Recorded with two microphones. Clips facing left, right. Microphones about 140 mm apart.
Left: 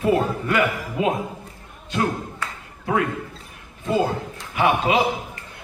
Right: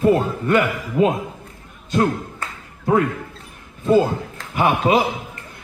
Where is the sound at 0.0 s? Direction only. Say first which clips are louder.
Right 3 dB; 35° right (ahead or behind).